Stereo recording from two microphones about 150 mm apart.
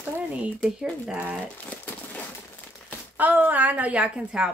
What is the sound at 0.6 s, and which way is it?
Speech, 5° right (ahead or behind).